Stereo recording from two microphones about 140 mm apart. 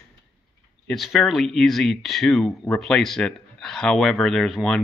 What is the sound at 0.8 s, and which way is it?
Speech, centre (ahead or behind).